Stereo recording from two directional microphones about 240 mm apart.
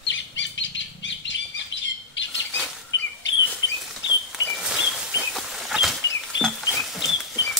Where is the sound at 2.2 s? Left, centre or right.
Left.